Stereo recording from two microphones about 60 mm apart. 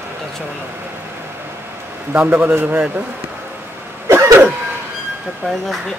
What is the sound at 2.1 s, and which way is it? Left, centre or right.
Speech, right.